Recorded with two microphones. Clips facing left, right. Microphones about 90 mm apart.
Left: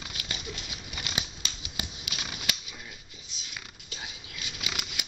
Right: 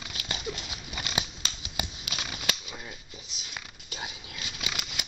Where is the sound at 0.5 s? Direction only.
50° right (ahead or behind).